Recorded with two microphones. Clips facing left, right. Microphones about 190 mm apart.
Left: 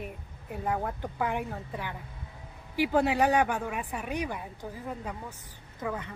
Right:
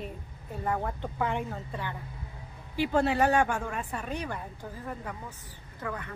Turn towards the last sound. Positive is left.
turn(degrees=20)  # may be behind; listen again after turning